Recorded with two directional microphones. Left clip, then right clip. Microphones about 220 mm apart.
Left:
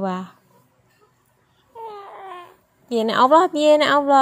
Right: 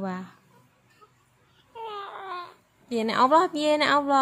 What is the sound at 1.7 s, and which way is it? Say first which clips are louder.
Baby cry: left 1 dB; 15° right (ahead or behind).